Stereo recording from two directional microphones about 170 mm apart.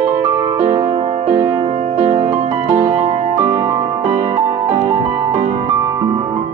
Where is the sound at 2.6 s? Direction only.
20° right (ahead or behind).